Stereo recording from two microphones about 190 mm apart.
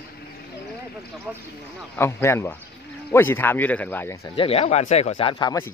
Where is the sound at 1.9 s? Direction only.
15° left (ahead or behind).